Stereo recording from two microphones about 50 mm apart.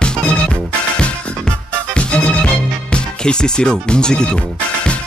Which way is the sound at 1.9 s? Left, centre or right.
Left.